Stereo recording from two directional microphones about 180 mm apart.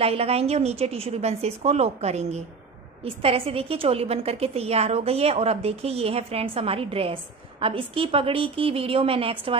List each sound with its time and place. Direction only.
0.0 s a woman's voice: 35° right (ahead or behind)